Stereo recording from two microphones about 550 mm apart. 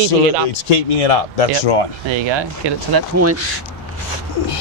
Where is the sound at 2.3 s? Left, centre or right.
Right.